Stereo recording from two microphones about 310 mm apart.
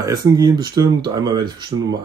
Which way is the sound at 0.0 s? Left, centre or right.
Centre.